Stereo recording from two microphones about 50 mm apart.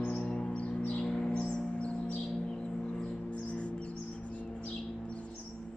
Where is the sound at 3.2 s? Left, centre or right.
Left.